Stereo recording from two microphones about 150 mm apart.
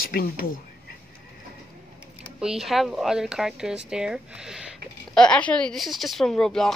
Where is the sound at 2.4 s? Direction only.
5° right (ahead or behind).